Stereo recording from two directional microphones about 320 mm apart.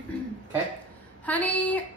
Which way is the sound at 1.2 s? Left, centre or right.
Centre.